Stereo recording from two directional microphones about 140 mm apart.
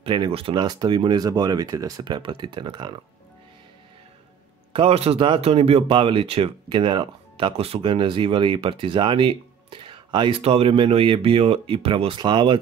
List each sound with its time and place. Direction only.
0.0 s speech: 35° right (ahead or behind)
0.6 s speech: 30° right (ahead or behind)
4.7 s speech: 45° right (ahead or behind)